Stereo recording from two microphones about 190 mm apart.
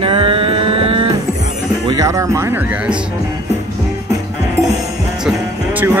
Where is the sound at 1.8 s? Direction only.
20° right (ahead or behind).